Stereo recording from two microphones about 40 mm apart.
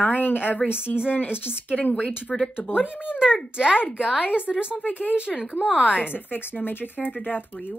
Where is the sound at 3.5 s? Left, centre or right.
Right.